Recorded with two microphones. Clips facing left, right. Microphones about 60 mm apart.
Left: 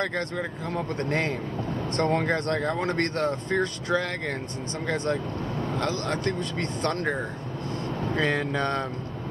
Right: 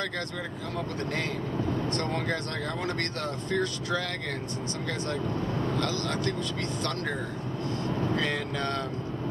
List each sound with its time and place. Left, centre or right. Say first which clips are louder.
0.7 s speech: left 5 dB; left
8.2 s speech: left 4 dB; left